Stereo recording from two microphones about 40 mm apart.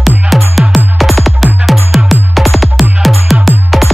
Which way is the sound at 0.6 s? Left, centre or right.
Centre.